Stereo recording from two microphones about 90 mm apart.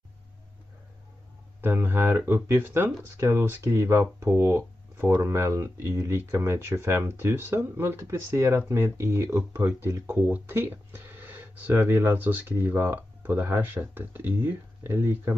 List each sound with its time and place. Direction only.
1.6 s speech: 25° right (ahead or behind)